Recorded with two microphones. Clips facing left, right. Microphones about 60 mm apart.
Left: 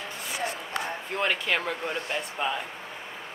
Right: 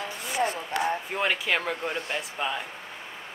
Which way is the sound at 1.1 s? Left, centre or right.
Centre.